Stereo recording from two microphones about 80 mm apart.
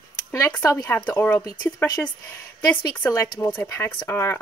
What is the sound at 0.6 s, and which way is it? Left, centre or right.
Speech, left.